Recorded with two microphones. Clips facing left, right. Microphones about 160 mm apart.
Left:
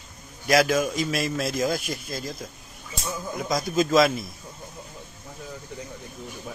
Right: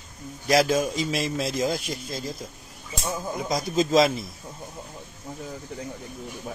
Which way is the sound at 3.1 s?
30° right (ahead or behind).